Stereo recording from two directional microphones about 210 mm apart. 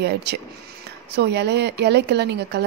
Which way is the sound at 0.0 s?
50° right (ahead or behind).